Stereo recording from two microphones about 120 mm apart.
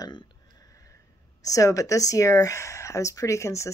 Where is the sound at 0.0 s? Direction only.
40° left (ahead or behind).